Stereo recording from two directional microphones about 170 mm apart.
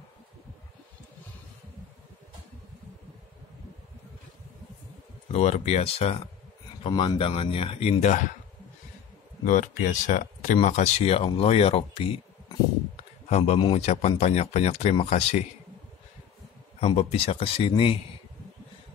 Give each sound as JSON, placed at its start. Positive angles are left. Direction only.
{"t": 5.3, "sound": "speech", "side_deg": 40}
{"t": 9.4, "sound": "speech", "side_deg": 50}
{"t": 16.8, "sound": "speech", "side_deg": 35}